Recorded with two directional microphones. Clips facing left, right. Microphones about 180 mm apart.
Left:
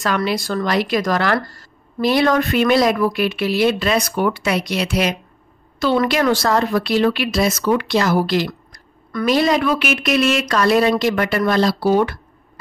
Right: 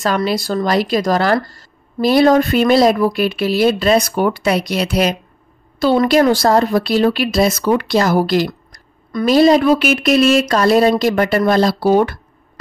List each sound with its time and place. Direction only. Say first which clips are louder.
0.0 s speech: right 3 dB; 35° right (ahead or behind)